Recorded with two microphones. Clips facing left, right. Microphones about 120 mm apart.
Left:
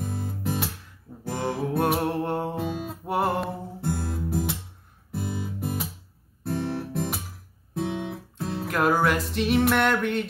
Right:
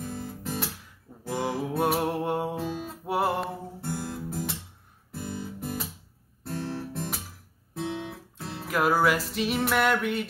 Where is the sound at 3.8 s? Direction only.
15° left (ahead or behind).